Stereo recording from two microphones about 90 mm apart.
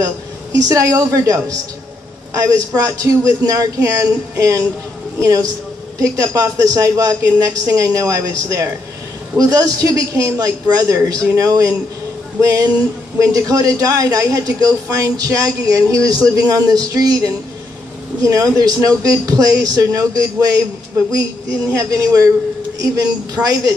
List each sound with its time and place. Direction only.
0.6 s a man's voice: 35° right (ahead or behind)